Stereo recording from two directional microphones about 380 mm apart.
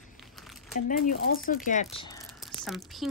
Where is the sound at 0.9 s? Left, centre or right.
Left.